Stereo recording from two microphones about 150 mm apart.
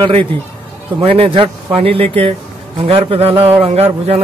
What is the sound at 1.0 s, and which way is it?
A man's voice, 40° right (ahead or behind).